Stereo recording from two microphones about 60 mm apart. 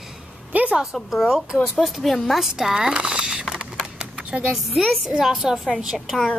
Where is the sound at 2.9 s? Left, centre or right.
Centre.